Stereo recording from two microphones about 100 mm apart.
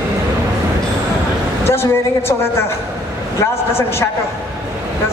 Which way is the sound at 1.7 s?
25° left (ahead or behind).